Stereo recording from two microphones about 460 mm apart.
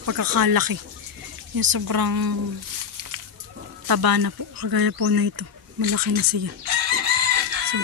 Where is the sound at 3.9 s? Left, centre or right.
Right.